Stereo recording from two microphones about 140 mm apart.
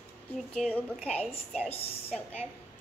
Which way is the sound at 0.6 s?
5° left (ahead or behind).